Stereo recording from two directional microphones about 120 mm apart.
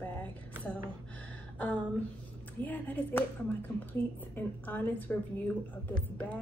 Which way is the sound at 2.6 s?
15° left (ahead or behind).